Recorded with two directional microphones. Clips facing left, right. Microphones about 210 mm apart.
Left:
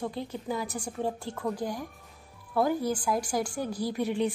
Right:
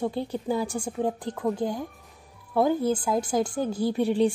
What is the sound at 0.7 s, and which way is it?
Speech, 20° right (ahead or behind).